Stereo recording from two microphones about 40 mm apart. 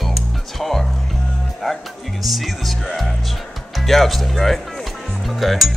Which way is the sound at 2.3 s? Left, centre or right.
Centre.